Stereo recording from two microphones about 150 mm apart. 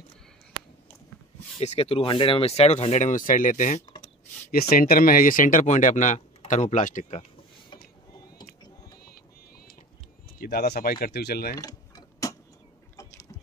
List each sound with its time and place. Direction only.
1.6 s speech: 45° left (ahead or behind); by 3.8 s 60° left (ahead or behind)
4.5 s speech: 80° left; by 7.2 s 55° left (ahead or behind)
10.4 s speech: 90° left
11.5 s mechanisms: 25° left (ahead or behind)